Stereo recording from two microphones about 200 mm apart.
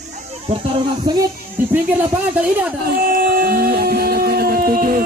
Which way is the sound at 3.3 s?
45° right (ahead or behind).